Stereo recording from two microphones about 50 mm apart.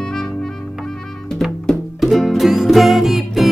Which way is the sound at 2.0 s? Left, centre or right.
Centre.